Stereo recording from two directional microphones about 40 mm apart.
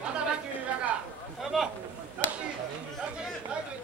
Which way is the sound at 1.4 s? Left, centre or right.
Centre.